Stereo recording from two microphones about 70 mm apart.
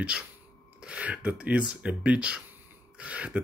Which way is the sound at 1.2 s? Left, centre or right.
Right.